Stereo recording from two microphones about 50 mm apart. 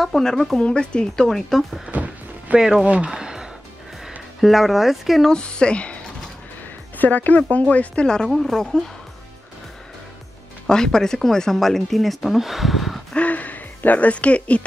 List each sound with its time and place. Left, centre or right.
0.0 s speech: centre
0.7 s speech: centre
1.1 s speech: centre
1.9 s music: right
2.8 s speech: right
3.1 s a sound: centre
4.4 s speech: centre
5.3 s speech: centre
7.0 s speech: left; by 8.3 s centre
8.3 s speech: centre
8.5 s speech: centre
10.7 s speech: centre
13.1 s speech: left